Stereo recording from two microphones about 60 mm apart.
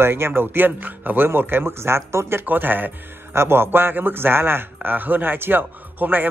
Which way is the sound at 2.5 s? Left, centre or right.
Right.